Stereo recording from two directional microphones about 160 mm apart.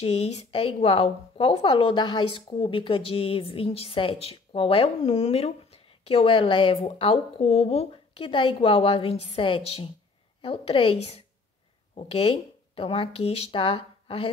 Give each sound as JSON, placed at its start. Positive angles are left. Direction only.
{"t": 0.0, "sound": "a woman's voice", "side_deg": 40}